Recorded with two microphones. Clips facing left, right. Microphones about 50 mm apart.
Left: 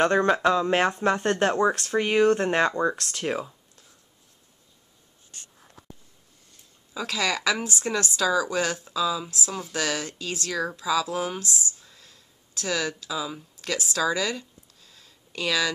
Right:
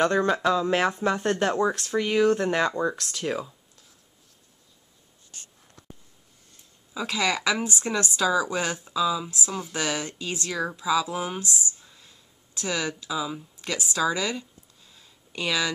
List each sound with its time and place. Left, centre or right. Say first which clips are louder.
0.0 s speech: left 2 dB; centre
6.9 s speech: right 1 dB; centre
11.8 s a sound: even; centre